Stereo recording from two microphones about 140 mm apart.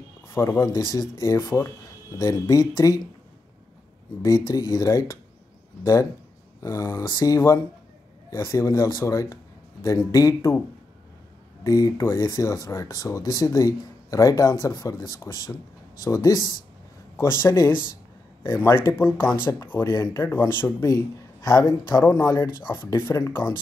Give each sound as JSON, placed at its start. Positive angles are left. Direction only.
{"t": 0.3, "sound": "speech", "side_deg": 20}
{"t": 4.2, "sound": "speech", "side_deg": 25}
{"t": 6.6, "sound": "speech", "side_deg": 20}
{"t": 11.6, "sound": "speech", "side_deg": 25}
{"t": 20.8, "sound": "speech", "side_deg": 25}